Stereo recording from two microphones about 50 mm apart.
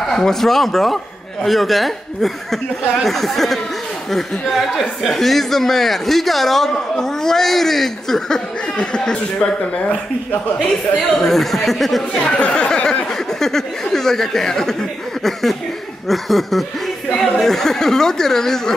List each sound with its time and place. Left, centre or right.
0.1 s a man's voice: centre
8.7 s speech: centre
11.1 s a man's voice: centre
12.1 s speech: centre
13.1 s a man's voice: centre